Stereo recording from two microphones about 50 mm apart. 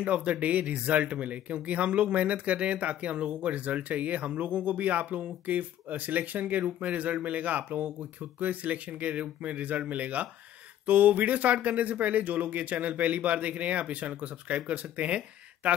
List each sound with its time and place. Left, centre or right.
0.0 s speech: right